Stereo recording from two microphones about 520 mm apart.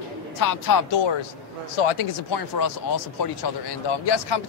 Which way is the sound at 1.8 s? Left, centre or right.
Left.